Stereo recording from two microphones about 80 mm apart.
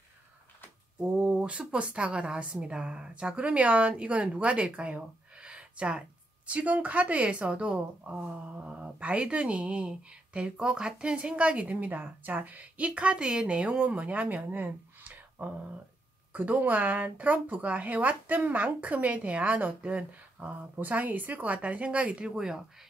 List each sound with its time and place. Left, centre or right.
1.0 s a woman's voice: centre